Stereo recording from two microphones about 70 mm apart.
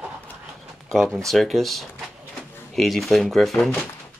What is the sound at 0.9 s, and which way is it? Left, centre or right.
Speech, centre.